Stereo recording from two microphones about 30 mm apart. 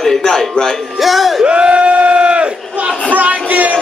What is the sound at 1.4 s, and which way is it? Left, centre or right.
Crowd, right.